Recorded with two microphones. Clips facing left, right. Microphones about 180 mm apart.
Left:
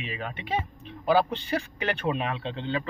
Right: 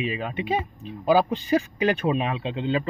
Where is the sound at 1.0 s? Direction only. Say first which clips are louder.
Right 3 dB; 10° right (ahead or behind).